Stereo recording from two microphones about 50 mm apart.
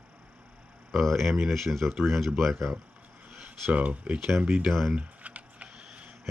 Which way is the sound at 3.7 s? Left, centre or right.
Right.